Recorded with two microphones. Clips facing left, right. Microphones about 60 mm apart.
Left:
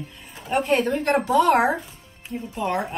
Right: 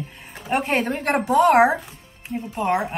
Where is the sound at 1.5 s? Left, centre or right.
Centre.